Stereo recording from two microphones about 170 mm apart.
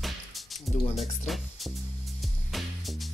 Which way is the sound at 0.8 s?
40° left (ahead or behind).